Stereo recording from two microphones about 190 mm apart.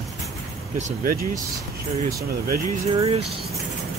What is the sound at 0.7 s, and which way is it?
Speech, 45° right (ahead or behind).